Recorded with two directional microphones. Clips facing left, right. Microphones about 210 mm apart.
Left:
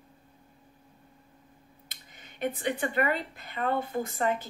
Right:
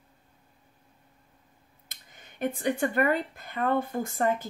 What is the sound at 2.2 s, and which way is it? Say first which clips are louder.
Speech: right 1 dB; 45° right (ahead or behind).